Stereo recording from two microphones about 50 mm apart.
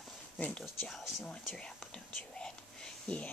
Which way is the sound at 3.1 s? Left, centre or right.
Left.